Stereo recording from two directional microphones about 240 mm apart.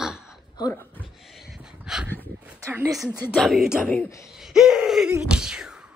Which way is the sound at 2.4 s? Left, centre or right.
Centre.